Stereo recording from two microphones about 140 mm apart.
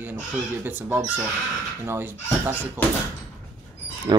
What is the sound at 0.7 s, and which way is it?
Speech, 15° right (ahead or behind).